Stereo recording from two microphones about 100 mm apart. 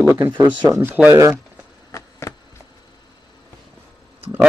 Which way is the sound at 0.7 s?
20° right (ahead or behind).